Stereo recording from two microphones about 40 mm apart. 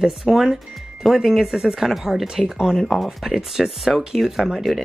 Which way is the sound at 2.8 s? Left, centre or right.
Centre.